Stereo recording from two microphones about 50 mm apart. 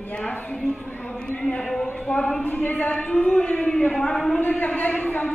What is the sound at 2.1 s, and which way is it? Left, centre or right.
Speech, left.